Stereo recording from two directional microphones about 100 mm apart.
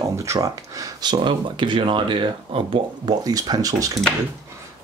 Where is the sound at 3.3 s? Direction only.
40° right (ahead or behind).